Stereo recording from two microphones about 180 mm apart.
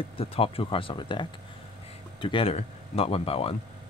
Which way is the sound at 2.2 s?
30° left (ahead or behind).